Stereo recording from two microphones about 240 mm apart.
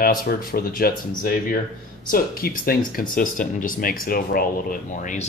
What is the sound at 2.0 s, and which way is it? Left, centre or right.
Speech, left.